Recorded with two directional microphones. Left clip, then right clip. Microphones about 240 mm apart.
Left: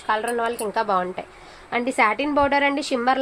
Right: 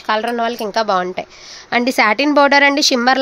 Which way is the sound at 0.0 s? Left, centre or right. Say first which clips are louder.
Right 5 dB; right.